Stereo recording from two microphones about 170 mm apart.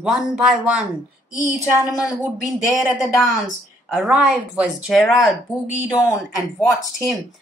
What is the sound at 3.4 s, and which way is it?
Speech, centre (ahead or behind).